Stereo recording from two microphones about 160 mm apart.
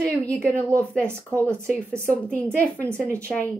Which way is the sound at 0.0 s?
5° left (ahead or behind).